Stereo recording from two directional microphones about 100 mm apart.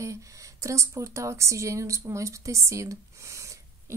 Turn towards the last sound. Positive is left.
turn(degrees=-30)  # may be behind; listen again after turning